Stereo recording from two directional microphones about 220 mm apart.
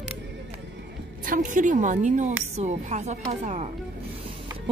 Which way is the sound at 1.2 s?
40° right (ahead or behind).